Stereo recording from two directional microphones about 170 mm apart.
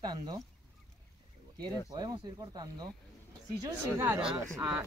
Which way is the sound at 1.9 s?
25° right (ahead or behind).